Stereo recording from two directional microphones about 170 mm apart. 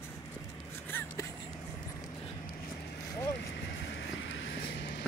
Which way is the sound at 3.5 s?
90° left.